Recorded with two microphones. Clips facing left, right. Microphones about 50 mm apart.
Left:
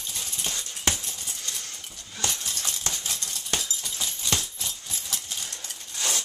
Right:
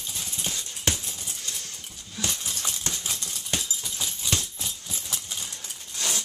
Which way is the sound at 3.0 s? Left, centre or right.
Centre.